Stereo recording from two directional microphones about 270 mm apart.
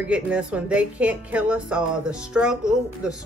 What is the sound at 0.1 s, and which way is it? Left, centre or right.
Speech, centre.